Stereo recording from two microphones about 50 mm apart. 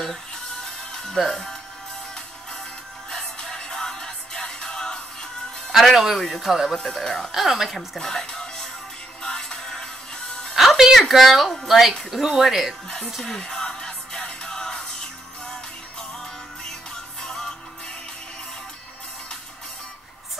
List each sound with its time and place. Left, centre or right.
1.0 s speech: centre
3.1 s music: centre
5.7 s speech: centre
6.8 s speech: centre
7.3 s speech: centre
9.2 s music: centre
10.5 s music: centre
11.0 s speech: centre
13.2 s music: centre
16.6 s music: centre